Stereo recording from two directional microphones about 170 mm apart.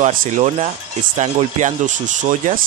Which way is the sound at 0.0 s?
40° right (ahead or behind).